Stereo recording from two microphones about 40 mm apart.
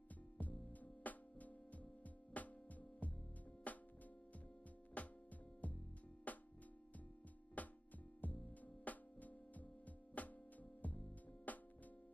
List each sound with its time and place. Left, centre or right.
0.4 s music: left
5.0 s music: left
7.6 s music: left